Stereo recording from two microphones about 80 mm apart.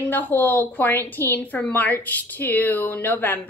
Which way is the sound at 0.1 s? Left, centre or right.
Left.